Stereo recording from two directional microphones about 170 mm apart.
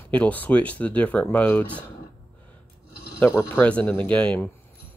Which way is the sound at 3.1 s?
15° left (ahead or behind).